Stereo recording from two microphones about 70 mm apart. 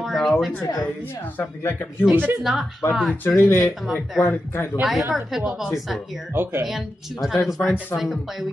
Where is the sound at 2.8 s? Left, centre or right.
Left.